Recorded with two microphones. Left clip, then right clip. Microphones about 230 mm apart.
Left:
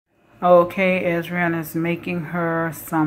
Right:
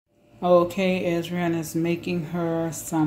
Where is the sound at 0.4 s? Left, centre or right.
Centre.